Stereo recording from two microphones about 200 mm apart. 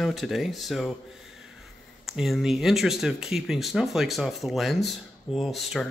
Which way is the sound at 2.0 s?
Centre (ahead or behind).